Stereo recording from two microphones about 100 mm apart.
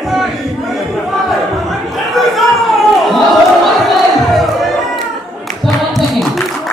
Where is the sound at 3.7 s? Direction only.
Centre (ahead or behind).